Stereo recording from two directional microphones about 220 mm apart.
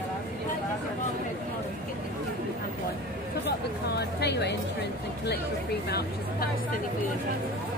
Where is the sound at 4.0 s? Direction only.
50° left (ahead or behind).